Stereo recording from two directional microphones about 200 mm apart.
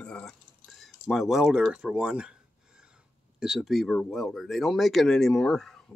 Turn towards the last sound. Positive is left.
turn(degrees=0)  # may be behind; listen again after turning